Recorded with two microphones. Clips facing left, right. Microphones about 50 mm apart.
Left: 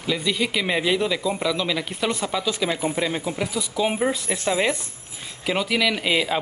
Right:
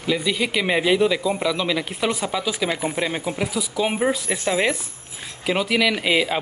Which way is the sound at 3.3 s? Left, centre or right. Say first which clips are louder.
Right 1 dB; centre.